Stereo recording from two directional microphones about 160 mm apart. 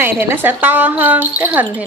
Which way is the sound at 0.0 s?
15° right (ahead or behind).